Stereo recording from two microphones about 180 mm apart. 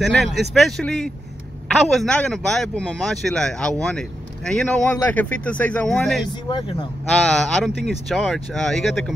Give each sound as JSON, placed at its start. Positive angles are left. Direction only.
{"t": 0.0, "sound": "speech", "side_deg": 0}
{"t": 6.2, "sound": "speech", "side_deg": 25}
{"t": 7.2, "sound": "speech", "side_deg": 5}